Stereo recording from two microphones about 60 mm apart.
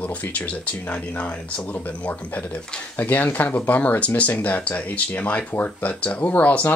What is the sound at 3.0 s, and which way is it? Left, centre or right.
Speech, left.